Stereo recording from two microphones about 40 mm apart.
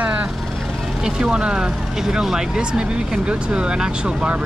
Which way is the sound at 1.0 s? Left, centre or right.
Centre.